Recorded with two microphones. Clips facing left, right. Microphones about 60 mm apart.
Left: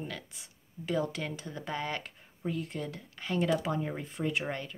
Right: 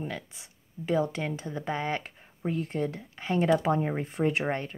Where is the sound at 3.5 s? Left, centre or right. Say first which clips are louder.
Right 9 dB; right.